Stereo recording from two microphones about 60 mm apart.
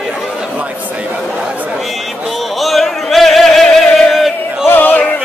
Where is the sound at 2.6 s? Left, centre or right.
Centre.